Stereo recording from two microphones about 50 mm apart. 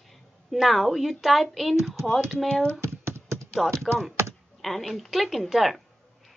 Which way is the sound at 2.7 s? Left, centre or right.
Right.